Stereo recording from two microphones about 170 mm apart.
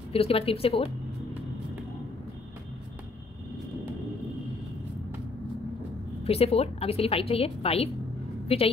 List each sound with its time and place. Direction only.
0.1 s a woman's voice: 35° left (ahead or behind)
6.2 s a woman's voice: 35° left (ahead or behind)